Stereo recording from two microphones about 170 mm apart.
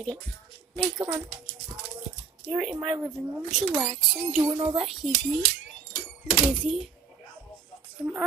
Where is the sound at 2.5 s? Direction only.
5° right (ahead or behind); by 4.7 s 20° right (ahead or behind).